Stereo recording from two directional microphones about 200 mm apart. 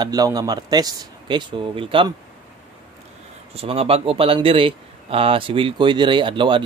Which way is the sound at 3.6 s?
30° right (ahead or behind).